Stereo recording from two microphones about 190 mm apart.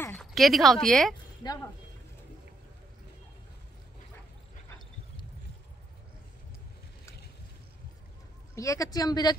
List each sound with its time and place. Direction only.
0.0 s speech: 5° left (ahead or behind)
1.4 s speech: 20° left (ahead or behind)
8.5 s speech: 15° left (ahead or behind)